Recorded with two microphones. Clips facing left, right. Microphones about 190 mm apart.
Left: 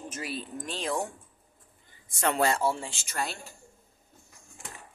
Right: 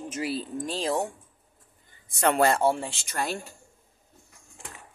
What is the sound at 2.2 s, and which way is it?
Speech, 60° right (ahead or behind).